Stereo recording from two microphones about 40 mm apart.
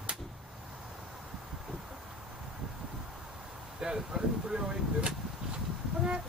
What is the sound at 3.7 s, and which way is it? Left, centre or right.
Speech, centre.